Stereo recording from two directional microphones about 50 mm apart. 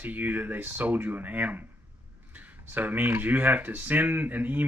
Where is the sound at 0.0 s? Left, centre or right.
Right.